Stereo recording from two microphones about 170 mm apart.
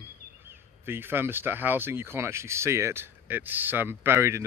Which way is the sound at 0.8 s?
15° right (ahead or behind).